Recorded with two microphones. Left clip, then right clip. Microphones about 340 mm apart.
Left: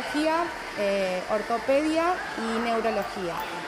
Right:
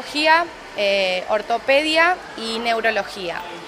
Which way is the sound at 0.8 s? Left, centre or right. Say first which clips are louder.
Right 7 dB; right.